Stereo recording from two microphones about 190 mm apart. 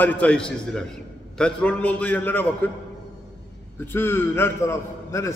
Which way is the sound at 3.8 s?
10° left (ahead or behind).